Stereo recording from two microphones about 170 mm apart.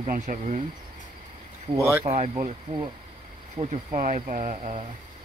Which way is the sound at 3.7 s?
45° right (ahead or behind).